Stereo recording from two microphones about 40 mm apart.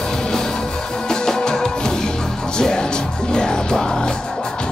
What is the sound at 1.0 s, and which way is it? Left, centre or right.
Music, centre.